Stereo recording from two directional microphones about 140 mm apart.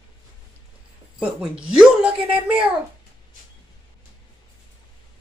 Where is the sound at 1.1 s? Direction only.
5° right (ahead or behind).